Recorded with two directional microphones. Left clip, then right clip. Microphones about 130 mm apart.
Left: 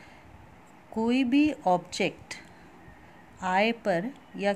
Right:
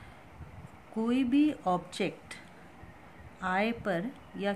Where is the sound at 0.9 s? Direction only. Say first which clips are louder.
Left 3 dB; 40° left (ahead or behind).